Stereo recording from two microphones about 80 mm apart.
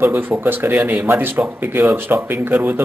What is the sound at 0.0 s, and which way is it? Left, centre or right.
A man's voice, right.